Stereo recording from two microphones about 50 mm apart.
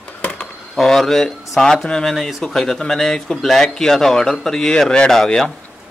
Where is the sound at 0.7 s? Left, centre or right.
Centre.